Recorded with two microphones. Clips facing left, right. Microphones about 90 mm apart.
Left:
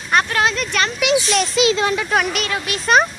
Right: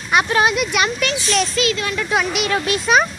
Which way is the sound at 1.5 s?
25° left (ahead or behind).